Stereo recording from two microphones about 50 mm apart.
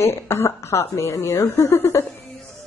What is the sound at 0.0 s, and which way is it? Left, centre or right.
Speech, left.